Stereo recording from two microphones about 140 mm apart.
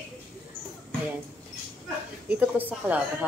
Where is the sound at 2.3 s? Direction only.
10° right (ahead or behind).